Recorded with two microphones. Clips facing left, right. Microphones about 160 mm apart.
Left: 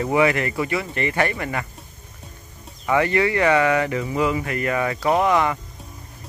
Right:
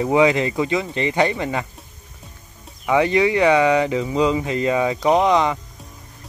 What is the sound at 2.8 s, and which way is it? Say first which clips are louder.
Speech: right 3 dB; 15° right (ahead or behind).